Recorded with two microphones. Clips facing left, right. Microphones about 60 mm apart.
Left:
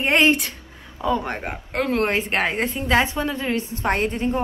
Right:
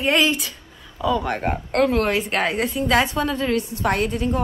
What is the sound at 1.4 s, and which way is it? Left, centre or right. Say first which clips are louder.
Speech: right 6 dB; centre.